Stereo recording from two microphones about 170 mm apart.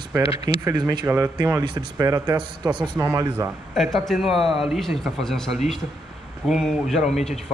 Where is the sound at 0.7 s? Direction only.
20° right (ahead or behind).